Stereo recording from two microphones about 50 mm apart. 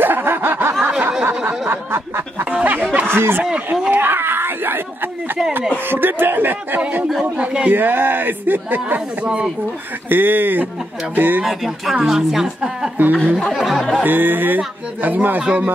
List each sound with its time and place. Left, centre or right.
0.0 s snicker: right
2.5 s a sound: right
3.1 s speech: right
3.5 s a sound: centre
3.9 s screaming: right
5.9 s chuckle: right
7.3 s a sound: right
7.7 s speech: right
9.2 s speech: right
10.0 s speech: right
11.4 s a woman's voice: centre
12.9 s speech: right
13.5 s a woman's voice: centre
14.0 s speech: right